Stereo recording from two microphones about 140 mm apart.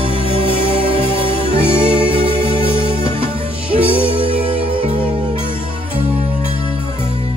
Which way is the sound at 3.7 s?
40° right (ahead or behind).